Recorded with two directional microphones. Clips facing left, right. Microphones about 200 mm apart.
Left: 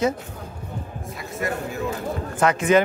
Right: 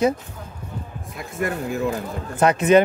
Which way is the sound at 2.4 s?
20° right (ahead or behind).